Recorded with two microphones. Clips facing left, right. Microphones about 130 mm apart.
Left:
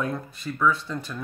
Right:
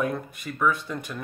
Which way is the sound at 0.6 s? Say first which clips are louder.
Left 1 dB; 15° right (ahead or behind).